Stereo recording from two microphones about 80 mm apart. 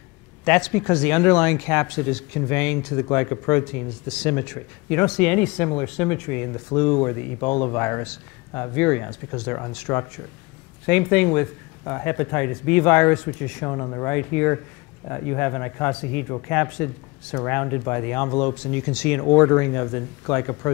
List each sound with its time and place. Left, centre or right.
0.5 s speech: centre
10.9 s speech: centre